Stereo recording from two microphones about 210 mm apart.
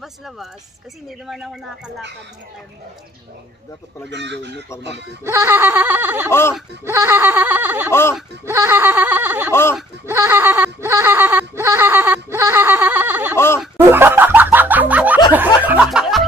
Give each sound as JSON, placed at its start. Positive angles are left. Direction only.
{"t": 0.0, "sound": "speech", "side_deg": 0}
{"t": 4.1, "sound": "speech", "side_deg": -55}
{"t": 5.2, "sound": "speech", "side_deg": -15}
{"t": 7.9, "sound": "speech", "side_deg": 10}
{"t": 8.5, "sound": "speech", "side_deg": -10}
{"t": 9.5, "sound": "speech", "side_deg": 10}
{"t": 10.0, "sound": "speech", "side_deg": -10}
{"t": 13.7, "sound": "snicker", "side_deg": -10}